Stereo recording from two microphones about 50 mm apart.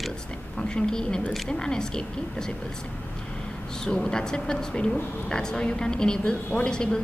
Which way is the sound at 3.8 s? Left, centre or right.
Centre.